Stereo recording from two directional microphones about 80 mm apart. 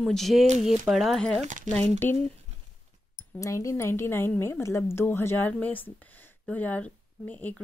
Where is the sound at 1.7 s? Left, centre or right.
Left.